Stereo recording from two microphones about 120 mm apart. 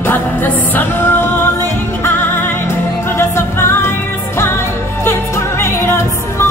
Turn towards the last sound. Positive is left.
turn(degrees=20)  # may be behind; listen again after turning